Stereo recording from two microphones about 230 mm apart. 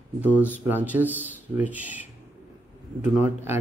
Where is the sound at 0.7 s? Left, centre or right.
Centre.